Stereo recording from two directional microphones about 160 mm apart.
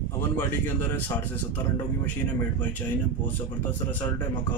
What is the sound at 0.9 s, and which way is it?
Speech, 15° left (ahead or behind).